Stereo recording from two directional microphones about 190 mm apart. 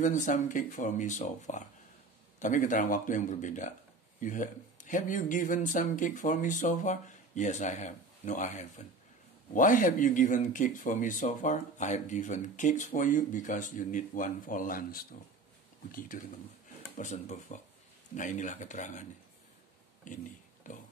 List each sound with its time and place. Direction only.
0.0 s speech: 40° left (ahead or behind)
16.9 s speech: 40° left (ahead or behind)
20.1 s speech: 40° left (ahead or behind)